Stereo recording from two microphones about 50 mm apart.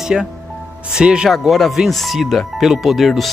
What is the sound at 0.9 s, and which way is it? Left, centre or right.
Speech, centre.